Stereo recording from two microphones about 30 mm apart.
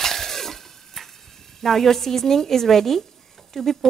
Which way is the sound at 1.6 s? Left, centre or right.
Centre.